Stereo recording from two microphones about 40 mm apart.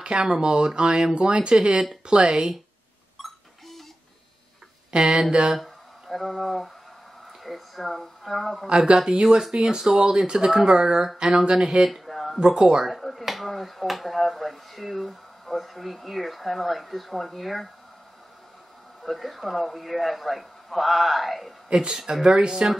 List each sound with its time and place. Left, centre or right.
0.0 s speech: right
3.2 s cash register: centre
4.9 s speech: centre
5.6 s a woman's voice: centre
8.6 s speech: right
11.9 s a sound: centre
12.4 s speech: centre
12.8 s speech: centre
19.0 s speech: centre
21.6 s speech: centre